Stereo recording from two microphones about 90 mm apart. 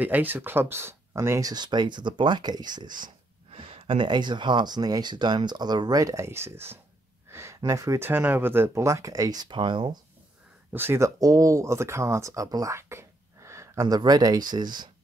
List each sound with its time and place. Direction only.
0.0 s speech: 20° right (ahead or behind)
1.4 s speech: 50° right (ahead or behind)
3.5 s speech: 90° right; by 9.9 s 65° right (ahead or behind)
10.7 s speech: 25° right (ahead or behind); by 14.9 s 55° right (ahead or behind)